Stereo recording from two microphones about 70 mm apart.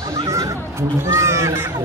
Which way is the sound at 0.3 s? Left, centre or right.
Right.